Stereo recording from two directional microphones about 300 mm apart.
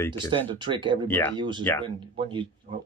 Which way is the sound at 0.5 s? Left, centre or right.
Centre.